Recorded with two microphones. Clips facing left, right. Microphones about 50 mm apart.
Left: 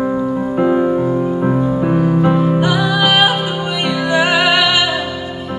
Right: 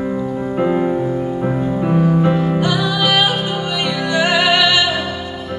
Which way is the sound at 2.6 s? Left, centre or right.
Left.